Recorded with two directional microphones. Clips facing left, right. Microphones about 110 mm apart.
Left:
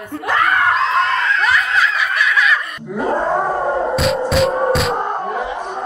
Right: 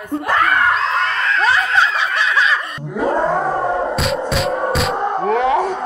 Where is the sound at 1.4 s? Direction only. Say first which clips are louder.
Right 1 dB; 30° right (ahead or behind).